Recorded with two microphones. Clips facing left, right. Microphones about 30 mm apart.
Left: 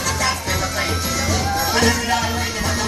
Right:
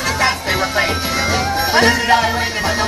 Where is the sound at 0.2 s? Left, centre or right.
Right.